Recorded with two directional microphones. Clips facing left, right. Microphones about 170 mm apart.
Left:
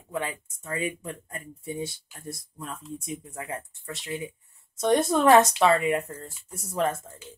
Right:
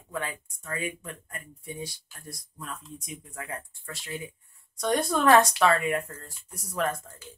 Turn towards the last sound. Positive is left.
turn(degrees=25)  # may be behind; listen again after turning